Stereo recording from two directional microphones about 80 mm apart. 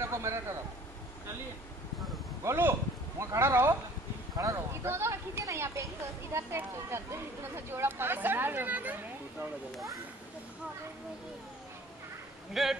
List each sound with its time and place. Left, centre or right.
0.0 s a man's voice: right
2.4 s speech: right
12.6 s speech: centre